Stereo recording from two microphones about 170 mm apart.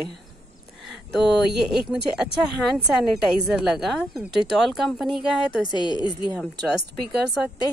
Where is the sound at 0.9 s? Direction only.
Centre (ahead or behind).